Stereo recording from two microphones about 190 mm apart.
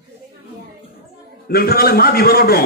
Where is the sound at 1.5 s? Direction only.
55° left (ahead or behind).